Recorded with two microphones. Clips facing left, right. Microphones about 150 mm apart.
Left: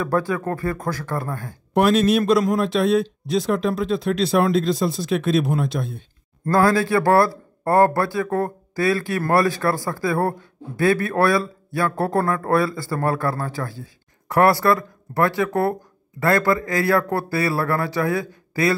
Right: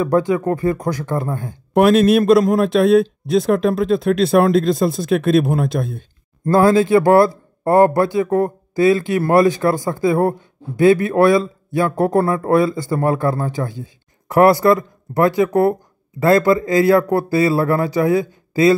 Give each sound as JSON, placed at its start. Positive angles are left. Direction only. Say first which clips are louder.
{"t": 0.0, "sound": "speech", "louder": "right 6 dB", "side_deg": -20}
{"t": 1.7, "sound": "a man's voice", "louder": "right 5 dB", "side_deg": -55}
{"t": 6.5, "sound": "speech", "louder": "right 5 dB", "side_deg": -25}